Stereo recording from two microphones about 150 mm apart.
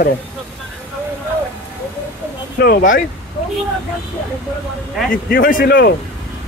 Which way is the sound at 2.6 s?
75° left (ahead or behind).